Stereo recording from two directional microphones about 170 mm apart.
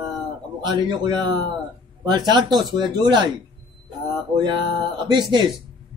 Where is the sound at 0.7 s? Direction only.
25° right (ahead or behind).